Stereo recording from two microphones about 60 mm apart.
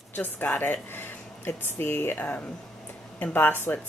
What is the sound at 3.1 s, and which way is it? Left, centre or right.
Speech, left.